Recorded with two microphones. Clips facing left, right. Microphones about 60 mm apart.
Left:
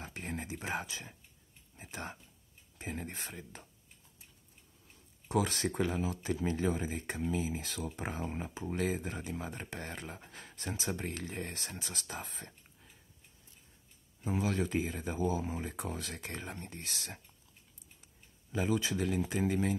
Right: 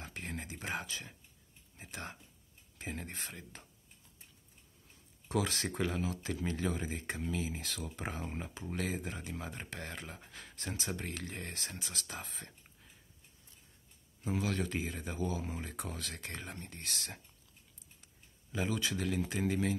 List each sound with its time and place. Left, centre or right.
0.0 s a sound: centre
0.7 s speech: centre
1.9 s speech: centre
5.3 s speech: centre
6.9 s speech: centre
14.2 s speech: centre
18.5 s speech: centre